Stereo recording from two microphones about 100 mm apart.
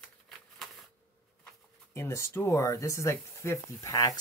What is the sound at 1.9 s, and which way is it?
Speech, 30° left (ahead or behind).